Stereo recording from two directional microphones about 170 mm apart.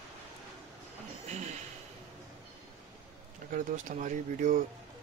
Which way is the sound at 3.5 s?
50° right (ahead or behind).